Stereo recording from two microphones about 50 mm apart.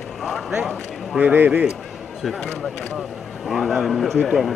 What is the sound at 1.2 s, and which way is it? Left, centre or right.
Speech, right.